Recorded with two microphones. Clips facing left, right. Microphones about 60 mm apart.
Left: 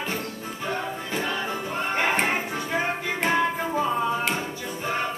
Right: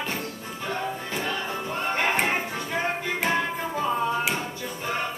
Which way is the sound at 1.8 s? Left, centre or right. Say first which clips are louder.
Even; centre.